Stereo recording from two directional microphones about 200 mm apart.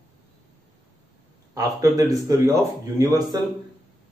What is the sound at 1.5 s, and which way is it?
Speech, 15° right (ahead or behind).